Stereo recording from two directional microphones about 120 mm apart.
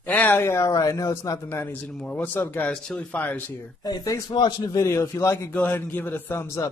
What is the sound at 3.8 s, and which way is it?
A man's voice, 30° left (ahead or behind).